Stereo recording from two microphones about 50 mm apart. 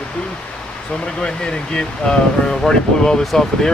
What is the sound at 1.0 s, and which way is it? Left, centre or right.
Speech, centre.